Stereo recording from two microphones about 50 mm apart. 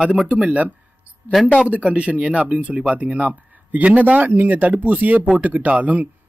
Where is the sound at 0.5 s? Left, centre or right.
Right.